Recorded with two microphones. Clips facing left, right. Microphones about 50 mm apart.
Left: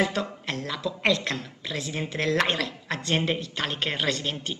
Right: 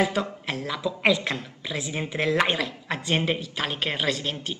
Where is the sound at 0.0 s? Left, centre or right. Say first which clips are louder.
Right 2 dB; centre.